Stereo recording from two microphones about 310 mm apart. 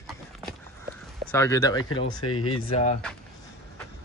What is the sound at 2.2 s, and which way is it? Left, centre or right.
Speech, left.